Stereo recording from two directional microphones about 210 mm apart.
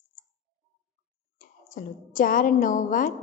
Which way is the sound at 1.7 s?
40° left (ahead or behind).